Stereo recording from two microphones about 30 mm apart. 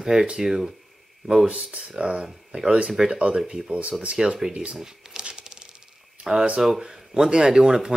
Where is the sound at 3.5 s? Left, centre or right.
Centre.